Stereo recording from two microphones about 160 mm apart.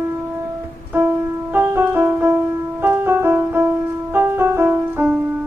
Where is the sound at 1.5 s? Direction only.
15° right (ahead or behind).